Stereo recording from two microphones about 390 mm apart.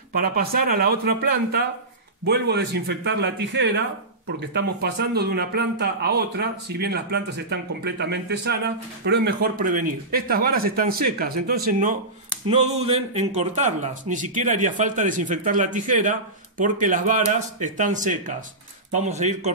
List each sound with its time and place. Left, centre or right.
0.1 s speech: right
5.1 s speech: right